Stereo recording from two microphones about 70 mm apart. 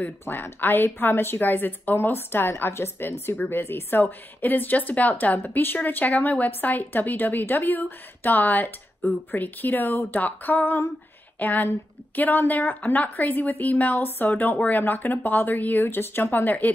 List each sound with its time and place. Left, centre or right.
0.2 s a woman's voice: left